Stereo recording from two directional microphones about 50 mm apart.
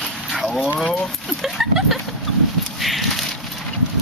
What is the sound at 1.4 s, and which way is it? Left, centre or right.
Speech, centre.